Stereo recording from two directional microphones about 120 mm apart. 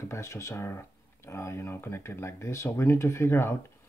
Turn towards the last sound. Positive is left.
turn(degrees=20)  # may be behind; listen again after turning